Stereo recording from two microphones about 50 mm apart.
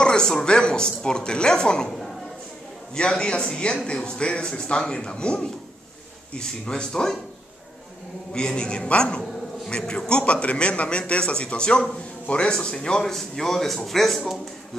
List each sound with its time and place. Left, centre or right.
0.0 s a man's voice: centre
8.3 s a man's voice: centre
13.0 s speech: centre